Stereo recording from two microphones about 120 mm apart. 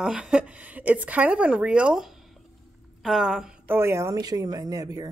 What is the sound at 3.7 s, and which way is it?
Speech, 20° right (ahead or behind).